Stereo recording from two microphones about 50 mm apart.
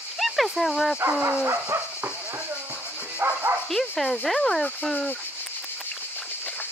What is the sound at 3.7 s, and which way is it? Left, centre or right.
Speech, centre.